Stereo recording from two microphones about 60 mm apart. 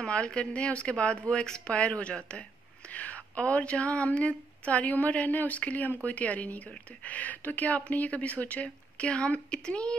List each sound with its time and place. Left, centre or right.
0.0 s speech: centre